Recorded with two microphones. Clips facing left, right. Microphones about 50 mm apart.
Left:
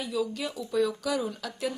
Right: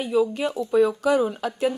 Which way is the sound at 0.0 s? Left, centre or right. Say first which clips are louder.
Right 8 dB; right.